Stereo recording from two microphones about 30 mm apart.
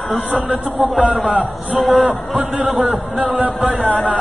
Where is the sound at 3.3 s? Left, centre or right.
Centre.